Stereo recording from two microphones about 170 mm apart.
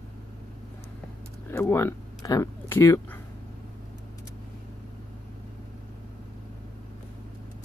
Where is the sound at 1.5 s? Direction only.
15° left (ahead or behind).